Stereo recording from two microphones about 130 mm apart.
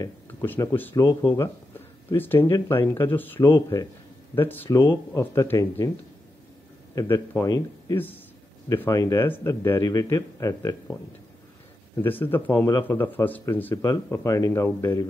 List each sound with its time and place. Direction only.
0.6 s speech: 25° left (ahead or behind)
7.0 s speech: 25° left (ahead or behind)
12.0 s speech: 15° left (ahead or behind)